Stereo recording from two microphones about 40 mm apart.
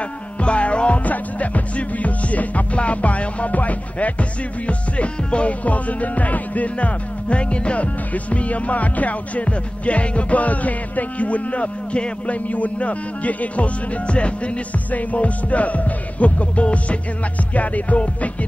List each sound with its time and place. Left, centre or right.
0.4 s music: left
14.9 s music: left